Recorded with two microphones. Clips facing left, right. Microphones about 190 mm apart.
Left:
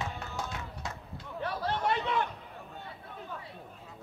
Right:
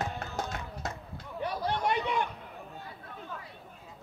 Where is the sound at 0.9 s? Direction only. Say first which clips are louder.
Right 1 dB; 5° right (ahead or behind).